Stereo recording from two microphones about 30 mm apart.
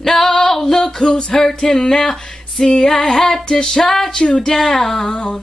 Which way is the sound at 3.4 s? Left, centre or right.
Left.